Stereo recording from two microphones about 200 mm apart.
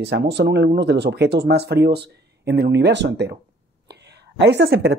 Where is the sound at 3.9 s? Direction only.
55° right (ahead or behind).